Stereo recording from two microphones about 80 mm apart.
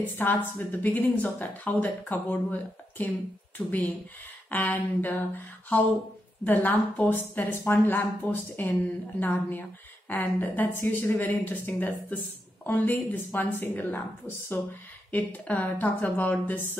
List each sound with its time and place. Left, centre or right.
0.0 s speech: left
3.6 s speech: centre
4.5 s speech: left